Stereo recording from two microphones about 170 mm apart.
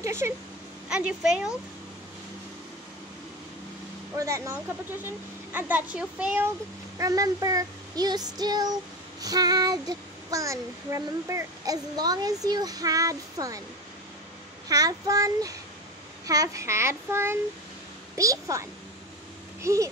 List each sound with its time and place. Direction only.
0.0 s speech: 15° right (ahead or behind)
0.8 s a woman's voice: 5° right (ahead or behind)
4.2 s speech: 20° right (ahead or behind)
7.0 s speech: 20° right (ahead or behind)
14.7 s a child's voice: 20° right (ahead or behind)